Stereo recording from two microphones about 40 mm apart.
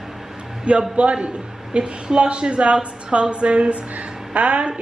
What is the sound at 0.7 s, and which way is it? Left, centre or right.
A woman's voice, right.